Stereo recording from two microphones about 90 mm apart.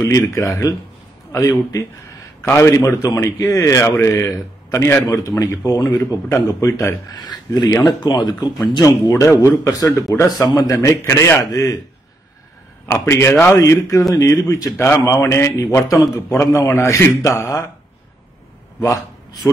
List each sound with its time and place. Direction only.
0.0 s speech: 40° left (ahead or behind)
7.1 s speech: 50° left (ahead or behind)
9.2 s speech: 35° left (ahead or behind)
12.8 s a man's voice: 30° left (ahead or behind)
13.6 s speech: 35° left (ahead or behind)
18.8 s speech: 40° left (ahead or behind)